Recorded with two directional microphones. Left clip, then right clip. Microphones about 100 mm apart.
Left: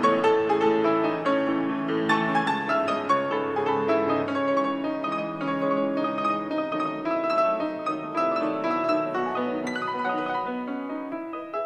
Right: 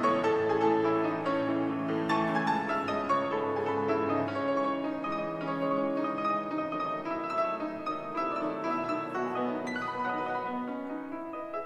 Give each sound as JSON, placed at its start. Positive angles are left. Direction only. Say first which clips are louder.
{"t": 0.0, "sound": "music", "louder": "left 6 dB", "side_deg": 35}